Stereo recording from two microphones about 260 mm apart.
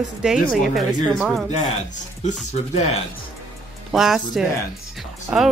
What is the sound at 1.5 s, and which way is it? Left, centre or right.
Speech, left.